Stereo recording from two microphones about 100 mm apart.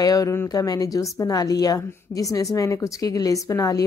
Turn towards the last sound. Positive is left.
turn(degrees=35)  # may be behind; listen again after turning